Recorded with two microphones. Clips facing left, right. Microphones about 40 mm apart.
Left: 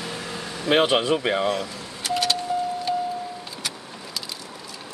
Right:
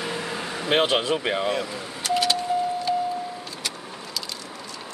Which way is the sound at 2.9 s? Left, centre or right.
Centre.